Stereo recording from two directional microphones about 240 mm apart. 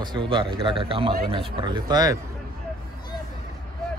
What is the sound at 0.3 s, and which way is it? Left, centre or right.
Speech, right.